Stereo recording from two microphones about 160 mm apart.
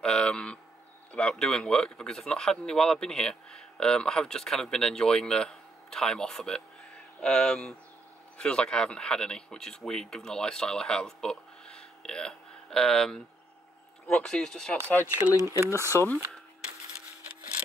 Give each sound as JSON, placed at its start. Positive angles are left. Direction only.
{"t": 0.0, "sound": "speech", "side_deg": 5}
{"t": 15.0, "sound": "speech", "side_deg": -15}
{"t": 15.9, "sound": "speech", "side_deg": 15}